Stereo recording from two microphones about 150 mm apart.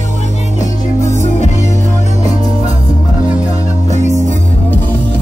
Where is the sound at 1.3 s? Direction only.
50° left (ahead or behind).